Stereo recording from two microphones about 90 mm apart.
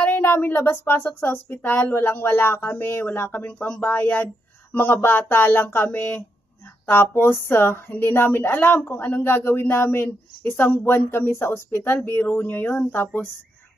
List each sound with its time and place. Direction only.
0.0 s speech: 25° left (ahead or behind)